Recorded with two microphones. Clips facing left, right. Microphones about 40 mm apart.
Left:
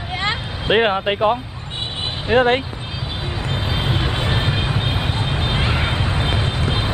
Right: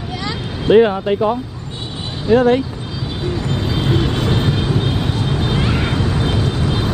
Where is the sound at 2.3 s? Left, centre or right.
Left.